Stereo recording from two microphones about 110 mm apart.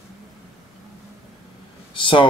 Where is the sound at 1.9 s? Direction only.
50° left (ahead or behind).